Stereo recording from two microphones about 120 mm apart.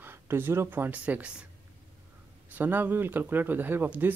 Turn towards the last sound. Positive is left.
turn(degrees=-15)  # may be behind; listen again after turning